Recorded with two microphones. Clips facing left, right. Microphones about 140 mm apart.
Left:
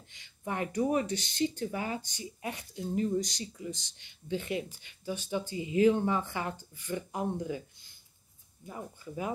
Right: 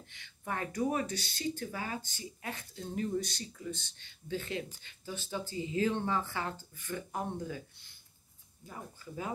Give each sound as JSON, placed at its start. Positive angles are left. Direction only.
{"t": 0.1, "sound": "speech", "side_deg": 15}
{"t": 8.6, "sound": "speech", "side_deg": 20}